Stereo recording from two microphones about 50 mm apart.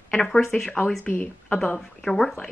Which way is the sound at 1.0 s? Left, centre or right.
Left.